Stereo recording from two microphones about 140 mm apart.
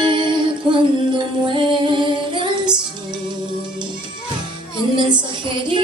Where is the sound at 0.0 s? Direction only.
35° right (ahead or behind).